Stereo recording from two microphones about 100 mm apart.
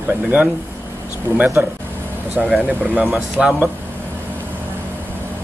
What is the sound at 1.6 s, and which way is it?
Speech, 15° right (ahead or behind).